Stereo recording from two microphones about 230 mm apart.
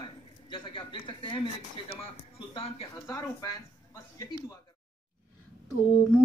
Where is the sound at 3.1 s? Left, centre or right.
Centre.